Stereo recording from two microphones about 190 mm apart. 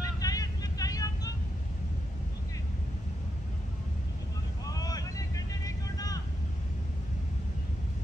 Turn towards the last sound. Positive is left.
turn(degrees=20)  # may be behind; listen again after turning